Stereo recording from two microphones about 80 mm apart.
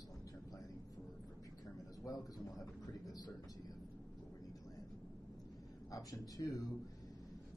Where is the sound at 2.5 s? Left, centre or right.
Left.